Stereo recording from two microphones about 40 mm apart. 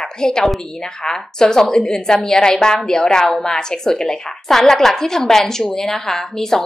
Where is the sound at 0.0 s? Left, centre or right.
Centre.